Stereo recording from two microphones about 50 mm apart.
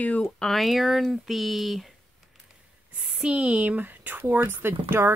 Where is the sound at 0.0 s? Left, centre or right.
Left.